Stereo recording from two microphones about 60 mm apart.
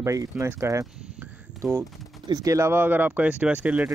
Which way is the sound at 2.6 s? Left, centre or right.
Right.